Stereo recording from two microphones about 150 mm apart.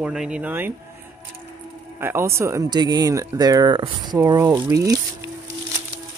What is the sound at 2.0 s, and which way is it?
Speech, 15° right (ahead or behind).